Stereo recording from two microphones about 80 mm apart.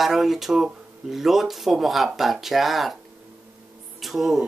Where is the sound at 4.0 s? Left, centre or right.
Centre.